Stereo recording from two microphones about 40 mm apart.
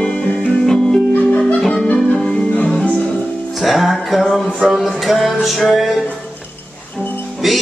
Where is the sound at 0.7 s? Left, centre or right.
Centre.